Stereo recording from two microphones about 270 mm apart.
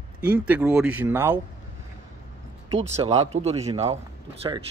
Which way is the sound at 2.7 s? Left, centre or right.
Right.